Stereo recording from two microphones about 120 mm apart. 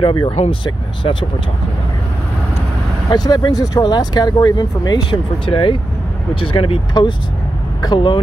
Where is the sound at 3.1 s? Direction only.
35° left (ahead or behind).